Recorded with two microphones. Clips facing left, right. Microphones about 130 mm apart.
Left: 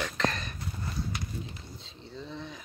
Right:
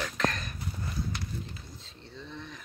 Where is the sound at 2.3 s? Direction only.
Centre (ahead or behind).